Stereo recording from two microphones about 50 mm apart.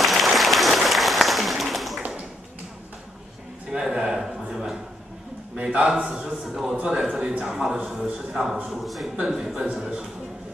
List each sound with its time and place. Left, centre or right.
0.0 s applause: centre
3.7 s a sound: centre
7.9 s a man's voice: centre